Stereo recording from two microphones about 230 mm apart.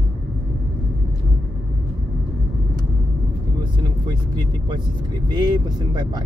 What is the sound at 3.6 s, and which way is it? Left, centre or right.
Vehicle, right.